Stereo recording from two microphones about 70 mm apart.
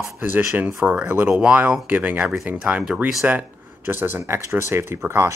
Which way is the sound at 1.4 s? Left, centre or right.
Centre.